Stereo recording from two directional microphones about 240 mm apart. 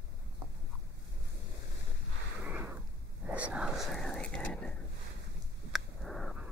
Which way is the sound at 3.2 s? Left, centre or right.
Centre.